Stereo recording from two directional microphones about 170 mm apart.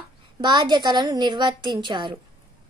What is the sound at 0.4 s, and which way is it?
A child's voice, 25° right (ahead or behind).